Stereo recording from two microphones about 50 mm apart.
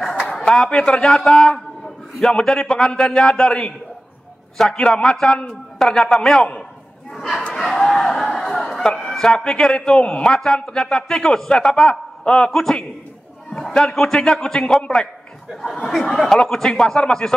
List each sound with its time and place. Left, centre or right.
0.4 s a man's voice: centre
7.2 s a sound: centre
9.1 s a man's voice: centre
15.9 s a man's voice: centre